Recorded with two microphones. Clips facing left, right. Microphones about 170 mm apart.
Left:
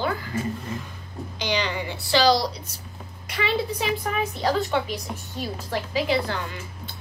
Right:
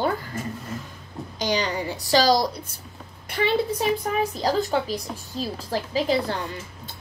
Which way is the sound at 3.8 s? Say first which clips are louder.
Right 3 dB; 35° right (ahead or behind).